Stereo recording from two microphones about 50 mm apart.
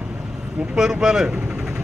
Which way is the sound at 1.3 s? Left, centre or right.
Right.